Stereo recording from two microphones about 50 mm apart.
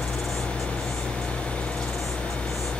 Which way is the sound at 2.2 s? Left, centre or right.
Left.